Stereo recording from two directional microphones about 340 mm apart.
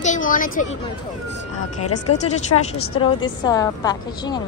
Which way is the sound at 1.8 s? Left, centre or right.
Left.